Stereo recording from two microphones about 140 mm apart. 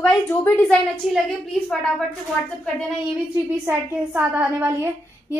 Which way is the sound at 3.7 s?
10° right (ahead or behind).